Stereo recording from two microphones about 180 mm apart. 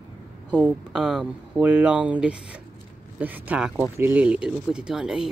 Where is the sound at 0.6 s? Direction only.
5° right (ahead or behind).